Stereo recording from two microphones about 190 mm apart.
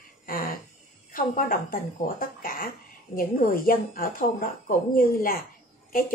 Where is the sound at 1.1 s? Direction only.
45° left (ahead or behind).